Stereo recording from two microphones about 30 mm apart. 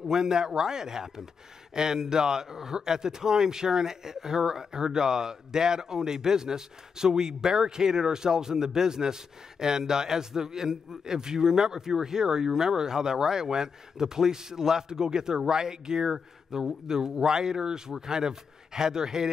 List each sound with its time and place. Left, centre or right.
0.1 s speech: centre